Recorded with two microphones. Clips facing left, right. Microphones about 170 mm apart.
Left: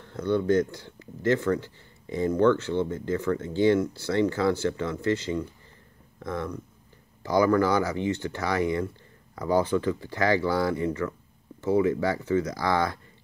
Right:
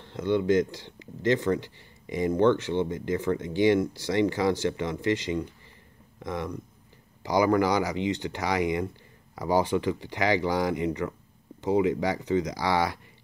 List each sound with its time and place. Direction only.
0.0 s speech: 20° right (ahead or behind)